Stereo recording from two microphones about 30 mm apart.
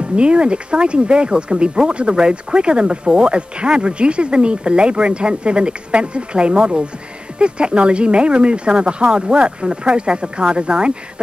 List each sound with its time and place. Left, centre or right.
0.1 s speech: right